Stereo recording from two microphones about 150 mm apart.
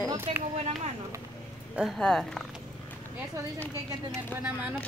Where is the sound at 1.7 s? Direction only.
Centre (ahead or behind).